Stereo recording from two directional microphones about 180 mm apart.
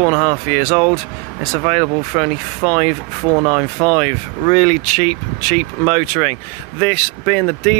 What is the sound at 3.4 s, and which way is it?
Speech, 25° right (ahead or behind).